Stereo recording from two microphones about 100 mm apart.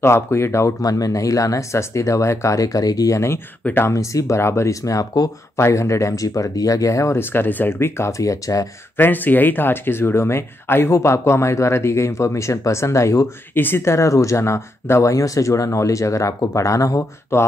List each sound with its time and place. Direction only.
0.0 s speech: 25° left (ahead or behind)
3.9 s speech: 30° left (ahead or behind)
8.9 s speech: 20° left (ahead or behind)
13.6 s speech: 20° left (ahead or behind)